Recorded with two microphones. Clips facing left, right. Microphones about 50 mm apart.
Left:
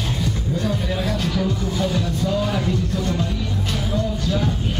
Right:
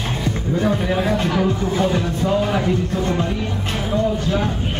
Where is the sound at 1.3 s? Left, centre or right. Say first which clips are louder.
Right 4 dB; right.